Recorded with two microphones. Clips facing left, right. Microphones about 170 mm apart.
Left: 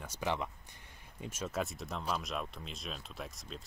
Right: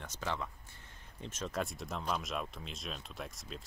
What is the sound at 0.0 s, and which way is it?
Speech, 15° left (ahead or behind).